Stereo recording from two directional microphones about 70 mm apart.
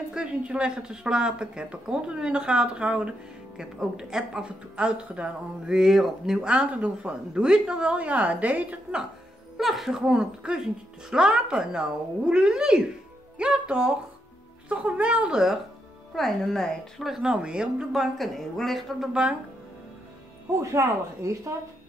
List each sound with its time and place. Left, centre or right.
0.1 s speech: centre
9.6 s speech: centre
16.2 s a woman's voice: centre
20.5 s speech: right